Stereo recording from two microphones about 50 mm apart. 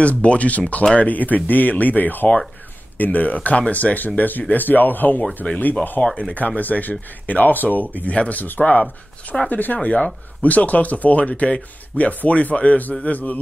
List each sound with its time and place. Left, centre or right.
0.0 s speech: left